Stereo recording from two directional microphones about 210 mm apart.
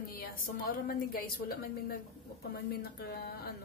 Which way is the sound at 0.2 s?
45° left (ahead or behind).